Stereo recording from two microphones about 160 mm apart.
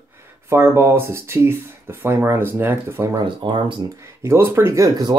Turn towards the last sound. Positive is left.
turn(degrees=-25)  # may be behind; listen again after turning